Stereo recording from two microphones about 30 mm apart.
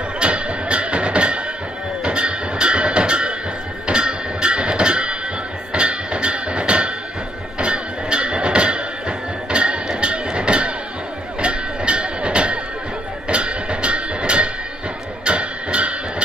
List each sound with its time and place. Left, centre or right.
0.2 s music: right